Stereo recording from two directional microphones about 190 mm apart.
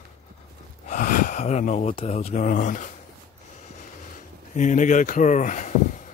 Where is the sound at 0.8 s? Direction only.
45° left (ahead or behind).